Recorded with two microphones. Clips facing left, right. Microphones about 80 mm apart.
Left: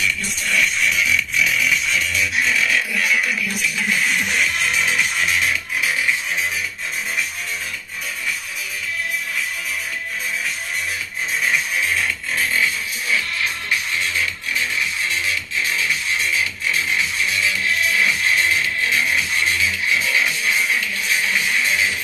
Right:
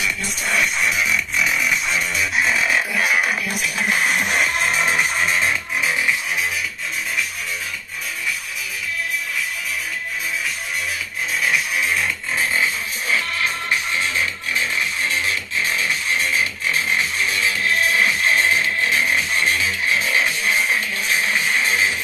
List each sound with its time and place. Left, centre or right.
0.0 s music: right
1.4 s music: centre
1.9 s music: right
11.4 s music: centre
15.2 s music: right